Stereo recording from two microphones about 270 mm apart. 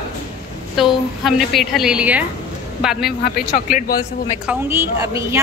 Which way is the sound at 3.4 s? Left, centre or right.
Left.